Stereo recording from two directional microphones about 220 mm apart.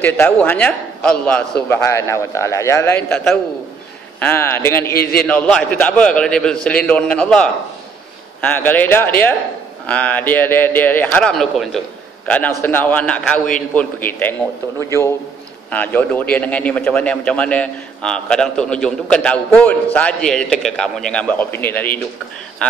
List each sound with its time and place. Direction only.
0.0 s a man's voice: 10° left (ahead or behind)
4.9 s a man's voice: 45° left (ahead or behind)
5.2 s a man's voice: 5° left (ahead or behind)